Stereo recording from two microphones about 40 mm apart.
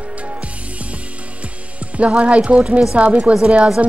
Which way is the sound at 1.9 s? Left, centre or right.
Right.